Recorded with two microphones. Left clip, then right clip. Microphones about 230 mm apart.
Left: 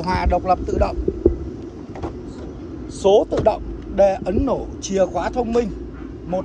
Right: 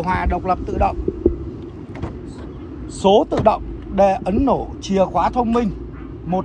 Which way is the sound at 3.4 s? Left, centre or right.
Centre.